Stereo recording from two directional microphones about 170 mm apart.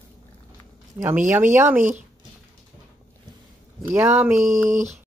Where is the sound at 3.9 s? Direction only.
15° right (ahead or behind).